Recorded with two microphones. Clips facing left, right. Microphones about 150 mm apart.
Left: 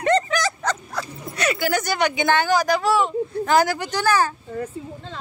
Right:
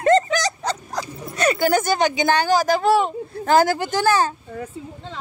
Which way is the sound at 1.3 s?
40° right (ahead or behind).